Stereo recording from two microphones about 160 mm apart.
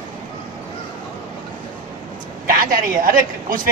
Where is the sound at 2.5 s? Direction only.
60° right (ahead or behind).